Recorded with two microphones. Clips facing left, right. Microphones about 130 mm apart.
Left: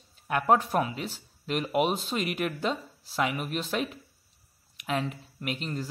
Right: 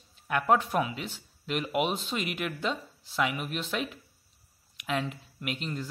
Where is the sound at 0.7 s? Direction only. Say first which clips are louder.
Left 1 dB; centre (ahead or behind).